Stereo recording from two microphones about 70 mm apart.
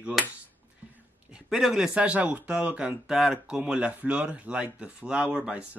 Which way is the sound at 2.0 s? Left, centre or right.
Centre.